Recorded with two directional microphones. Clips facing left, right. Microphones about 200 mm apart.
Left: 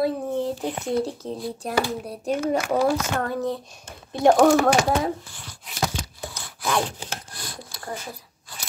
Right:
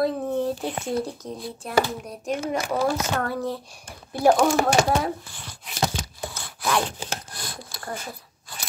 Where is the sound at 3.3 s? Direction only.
20° left (ahead or behind).